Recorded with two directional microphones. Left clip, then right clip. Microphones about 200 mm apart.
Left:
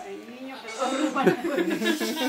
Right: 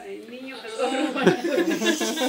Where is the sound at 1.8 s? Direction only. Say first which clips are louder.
Right 3 dB; 10° right (ahead or behind).